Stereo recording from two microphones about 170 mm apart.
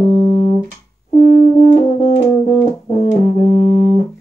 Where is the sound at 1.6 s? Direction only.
40° left (ahead or behind).